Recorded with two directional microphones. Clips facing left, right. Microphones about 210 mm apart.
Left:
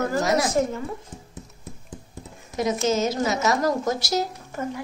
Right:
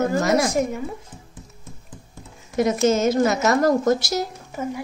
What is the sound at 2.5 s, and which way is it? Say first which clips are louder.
A woman's voice: right 4 dB; 55° right (ahead or behind).